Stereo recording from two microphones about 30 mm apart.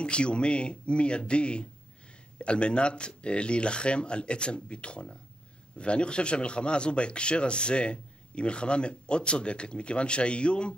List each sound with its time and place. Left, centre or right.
0.0 s speech: left